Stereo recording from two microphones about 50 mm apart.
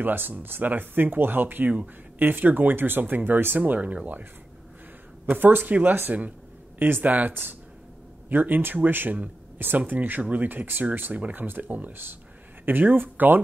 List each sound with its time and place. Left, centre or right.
0.0 s speech: right
5.3 s speech: right